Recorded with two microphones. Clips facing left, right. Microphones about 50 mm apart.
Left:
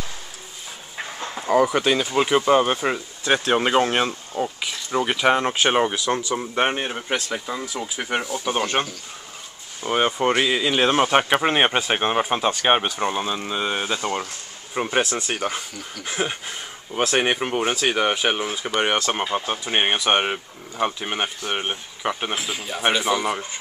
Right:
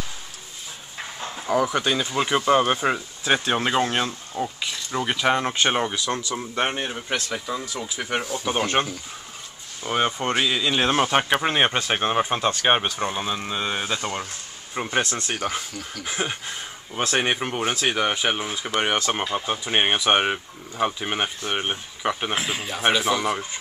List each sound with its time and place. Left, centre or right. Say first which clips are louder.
1.6 s speech: left 4 dB; centre
1.9 s speech: left 3 dB; centre
3.5 s speech: left 3 dB; centre
8.8 s speech: right 1 dB; centre
9.8 s speech: left 3 dB; centre
22.3 s speech: right 1 dB; right
22.7 s speech: left 1 dB; centre